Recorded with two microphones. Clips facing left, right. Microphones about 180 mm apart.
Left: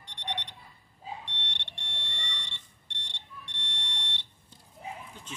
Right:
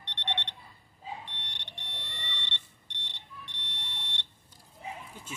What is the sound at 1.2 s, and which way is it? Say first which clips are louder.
Alarm: left 2 dB; centre (ahead or behind).